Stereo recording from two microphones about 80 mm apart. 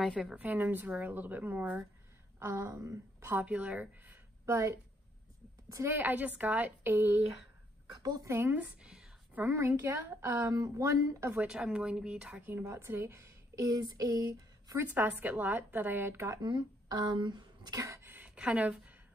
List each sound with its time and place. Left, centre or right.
0.4 s a woman's voice: right
2.3 s a woman's voice: right
3.4 s speech: centre
5.9 s a woman's voice: right
8.0 s a woman's voice: right
8.3 s a woman's voice: right
11.4 s speech: centre
12.4 s a woman's voice: right
13.7 s a sound: right
14.8 s a woman's voice: right
16.9 s speech: right
17.7 s a sound: right
18.1 s a sound: centre